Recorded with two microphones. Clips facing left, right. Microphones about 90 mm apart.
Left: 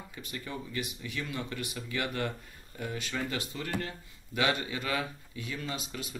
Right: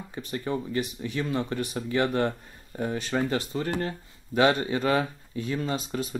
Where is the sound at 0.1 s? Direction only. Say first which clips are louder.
Right 11 dB; 35° right (ahead or behind).